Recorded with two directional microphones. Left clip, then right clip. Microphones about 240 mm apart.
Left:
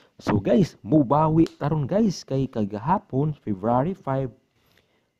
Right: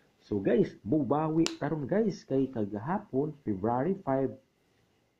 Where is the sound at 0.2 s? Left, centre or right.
Left.